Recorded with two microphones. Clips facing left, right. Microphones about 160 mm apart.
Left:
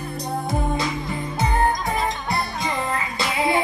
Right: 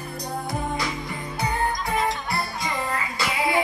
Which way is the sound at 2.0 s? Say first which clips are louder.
Left 2 dB; 20° left (ahead or behind).